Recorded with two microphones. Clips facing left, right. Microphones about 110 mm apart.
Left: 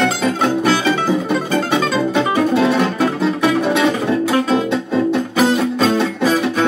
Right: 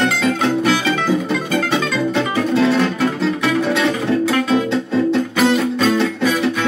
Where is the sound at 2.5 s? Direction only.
15° left (ahead or behind).